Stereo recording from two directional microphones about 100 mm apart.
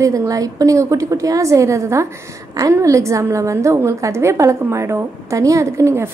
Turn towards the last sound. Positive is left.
turn(degrees=-25)  # may be behind; listen again after turning